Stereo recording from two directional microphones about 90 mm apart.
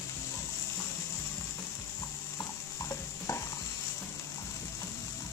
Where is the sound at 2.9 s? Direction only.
35° left (ahead or behind).